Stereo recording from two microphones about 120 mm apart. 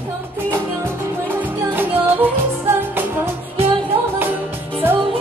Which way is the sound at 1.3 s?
15° right (ahead or behind).